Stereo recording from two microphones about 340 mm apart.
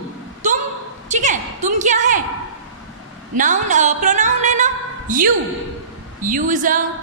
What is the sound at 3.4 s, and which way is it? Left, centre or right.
A woman's voice, right.